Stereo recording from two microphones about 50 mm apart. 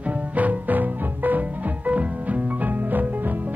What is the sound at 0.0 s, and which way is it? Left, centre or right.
Music, right.